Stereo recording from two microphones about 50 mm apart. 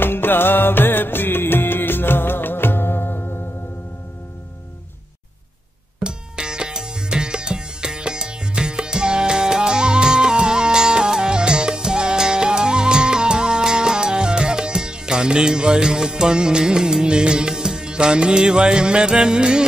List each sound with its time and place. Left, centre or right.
0.0 s music of bollywood: left
6.0 s music: centre